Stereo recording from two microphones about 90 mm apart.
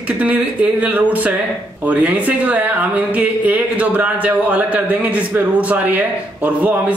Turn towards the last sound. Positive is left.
turn(degrees=-15)  # may be behind; listen again after turning